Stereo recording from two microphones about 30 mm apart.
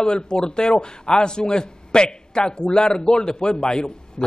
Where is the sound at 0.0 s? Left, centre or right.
Left.